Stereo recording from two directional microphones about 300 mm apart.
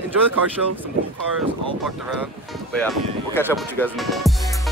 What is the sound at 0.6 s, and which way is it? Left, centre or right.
Speech, right.